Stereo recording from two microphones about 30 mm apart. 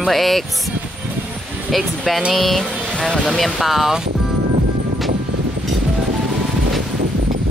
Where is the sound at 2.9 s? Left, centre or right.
Left.